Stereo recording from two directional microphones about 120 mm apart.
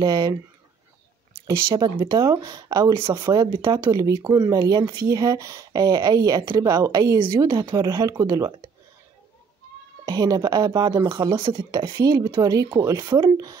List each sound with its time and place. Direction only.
0.0 s speech: 35° right (ahead or behind)
1.7 s speech: 40° right (ahead or behind)
2.1 s speech: 30° right (ahead or behind)
7.4 s speech: 40° right (ahead or behind)
7.7 s speech: 30° right (ahead or behind)
10.0 s speech: 35° right (ahead or behind)